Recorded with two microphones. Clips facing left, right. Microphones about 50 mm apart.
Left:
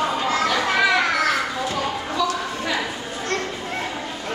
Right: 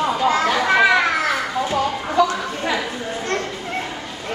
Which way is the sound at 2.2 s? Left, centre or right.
Right.